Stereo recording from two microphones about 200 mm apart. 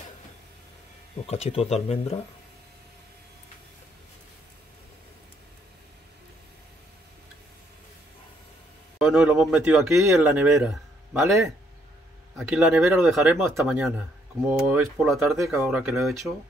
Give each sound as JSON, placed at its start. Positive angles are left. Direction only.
{"t": 1.2, "sound": "speech", "side_deg": 30}
{"t": 8.9, "sound": "a man's voice", "side_deg": -5}
{"t": 12.4, "sound": "speech", "side_deg": -5}